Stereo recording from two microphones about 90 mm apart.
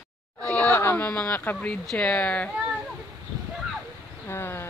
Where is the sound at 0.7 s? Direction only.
30° left (ahead or behind).